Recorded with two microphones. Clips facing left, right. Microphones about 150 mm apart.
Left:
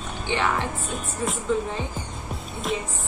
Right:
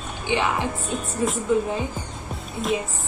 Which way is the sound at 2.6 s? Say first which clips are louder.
Right 3 dB; centre (ahead or behind).